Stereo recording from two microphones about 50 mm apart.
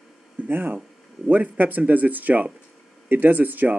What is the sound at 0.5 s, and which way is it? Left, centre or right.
Speech, right.